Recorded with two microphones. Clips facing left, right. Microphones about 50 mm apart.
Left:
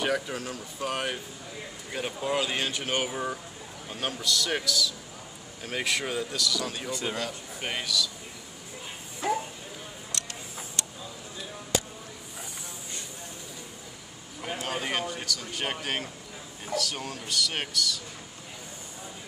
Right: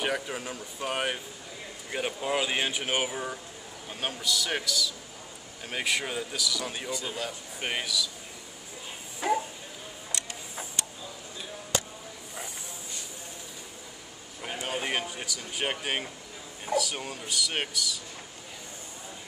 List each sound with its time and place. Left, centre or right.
0.0 s a man's voice: centre
6.9 s a man's voice: left
7.2 s speech: centre
14.4 s a sound: centre
14.9 s speech: centre